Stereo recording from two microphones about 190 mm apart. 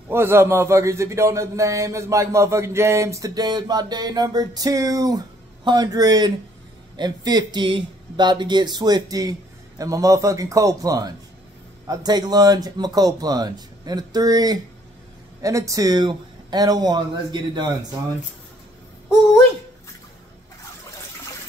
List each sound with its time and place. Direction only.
0.1 s a man's voice: 10° right (ahead or behind)